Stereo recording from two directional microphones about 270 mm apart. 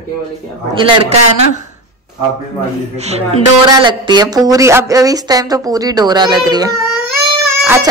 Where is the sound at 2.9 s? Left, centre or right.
Right.